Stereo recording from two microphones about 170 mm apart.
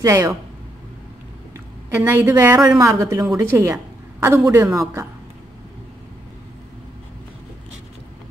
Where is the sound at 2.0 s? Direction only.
15° right (ahead or behind).